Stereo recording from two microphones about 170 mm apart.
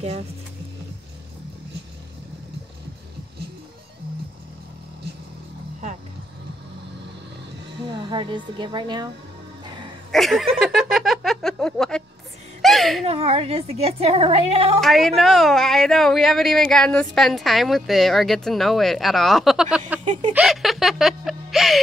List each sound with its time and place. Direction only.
7.8 s speech: 30° right (ahead or behind)
10.1 s a sound: centre (ahead or behind)
13.0 s a woman's voice: 35° right (ahead or behind)
14.8 s a woman's voice: centre (ahead or behind)
20.3 s music: centre (ahead or behind)